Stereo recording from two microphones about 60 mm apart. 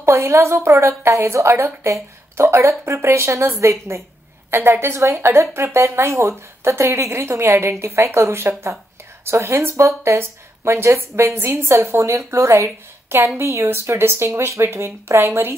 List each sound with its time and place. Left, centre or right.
0.0 s speech: right